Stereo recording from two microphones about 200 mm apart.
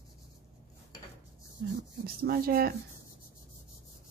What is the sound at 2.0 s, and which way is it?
Speech, 50° right (ahead or behind).